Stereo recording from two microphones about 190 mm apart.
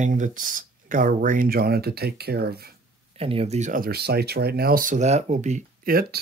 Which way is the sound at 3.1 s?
30° right (ahead or behind).